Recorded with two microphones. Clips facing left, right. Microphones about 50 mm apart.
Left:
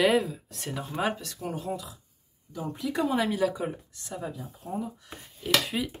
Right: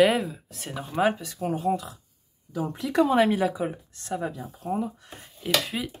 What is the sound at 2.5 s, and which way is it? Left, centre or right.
Speech, right.